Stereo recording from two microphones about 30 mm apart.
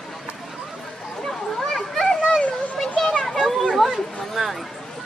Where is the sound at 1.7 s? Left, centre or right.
Centre.